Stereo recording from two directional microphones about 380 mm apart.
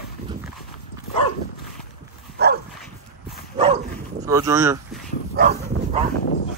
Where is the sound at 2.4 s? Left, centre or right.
Right.